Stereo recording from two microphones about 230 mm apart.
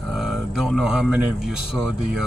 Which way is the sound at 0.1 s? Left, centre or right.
Centre.